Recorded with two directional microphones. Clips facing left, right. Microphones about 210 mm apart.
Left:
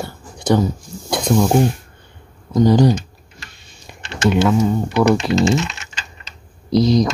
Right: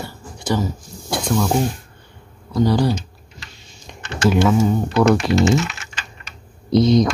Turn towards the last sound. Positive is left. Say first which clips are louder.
# even
turn(degrees=0)  # may be behind; listen again after turning